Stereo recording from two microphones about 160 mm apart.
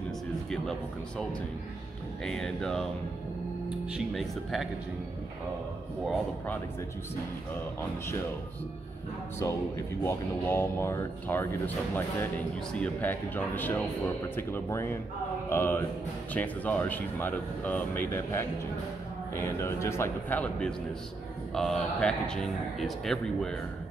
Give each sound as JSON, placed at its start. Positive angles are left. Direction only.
{"t": 0.5, "sound": "a man's voice", "side_deg": 5}
{"t": 2.2, "sound": "a man's voice", "side_deg": 5}
{"t": 3.9, "sound": "a man's voice", "side_deg": 0}
{"t": 6.0, "sound": "speech", "side_deg": 10}
{"t": 10.0, "sound": "a man's voice", "side_deg": 15}